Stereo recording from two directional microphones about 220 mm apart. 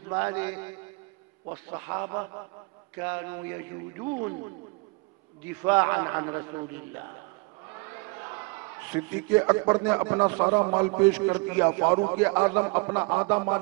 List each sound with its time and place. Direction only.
0.1 s a man's voice: 10° right (ahead or behind)
1.4 s a man's voice: 25° right (ahead or behind)
1.8 s a man's voice: 15° right (ahead or behind)
4.0 s speech: 20° right (ahead or behind)
5.5 s a man's voice: 10° right (ahead or behind)